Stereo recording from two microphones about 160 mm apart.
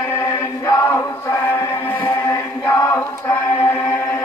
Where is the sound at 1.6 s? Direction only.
15° left (ahead or behind).